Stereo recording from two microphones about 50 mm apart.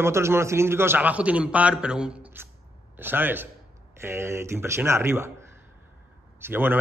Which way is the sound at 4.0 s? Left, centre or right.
Right.